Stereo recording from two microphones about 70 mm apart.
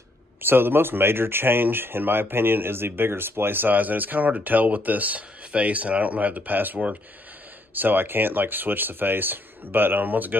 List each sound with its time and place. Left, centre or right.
0.4 s speech: right